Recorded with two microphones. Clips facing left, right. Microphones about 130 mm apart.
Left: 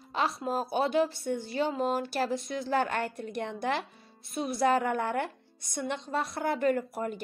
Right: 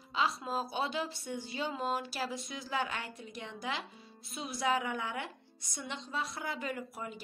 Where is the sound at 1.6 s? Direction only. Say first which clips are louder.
Left 4 dB; 35° left (ahead or behind).